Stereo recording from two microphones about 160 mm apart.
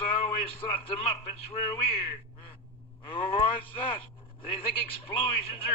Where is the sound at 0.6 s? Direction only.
35° left (ahead or behind).